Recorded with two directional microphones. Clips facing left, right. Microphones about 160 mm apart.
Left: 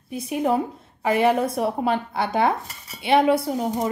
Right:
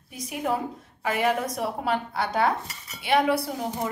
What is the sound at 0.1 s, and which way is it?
Speech, 25° left (ahead or behind).